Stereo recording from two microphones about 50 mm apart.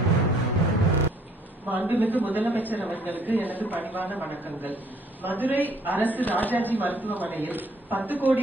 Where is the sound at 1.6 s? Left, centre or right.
Right.